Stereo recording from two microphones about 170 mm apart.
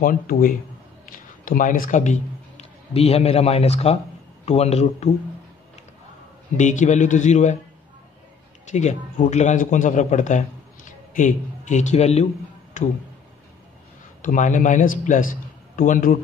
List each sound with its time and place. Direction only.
0.0 s a man's voice: 55° left (ahead or behind); by 5.1 s 40° left (ahead or behind)
6.5 s a man's voice: 45° left (ahead or behind)
8.6 s a man's voice: 45° left (ahead or behind)
14.2 s a man's voice: 50° left (ahead or behind)